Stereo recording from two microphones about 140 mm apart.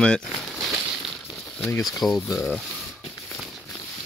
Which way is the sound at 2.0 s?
Centre (ahead or behind).